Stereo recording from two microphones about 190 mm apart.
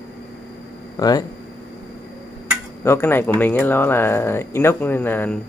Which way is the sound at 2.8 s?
10° left (ahead or behind).